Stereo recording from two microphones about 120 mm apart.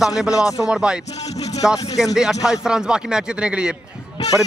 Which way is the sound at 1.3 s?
65° left (ahead or behind).